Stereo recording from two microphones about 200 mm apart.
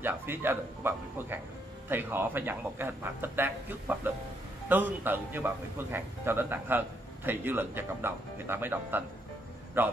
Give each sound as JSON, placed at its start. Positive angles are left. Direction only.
{"t": 0.0, "sound": "a man's voice", "side_deg": -10}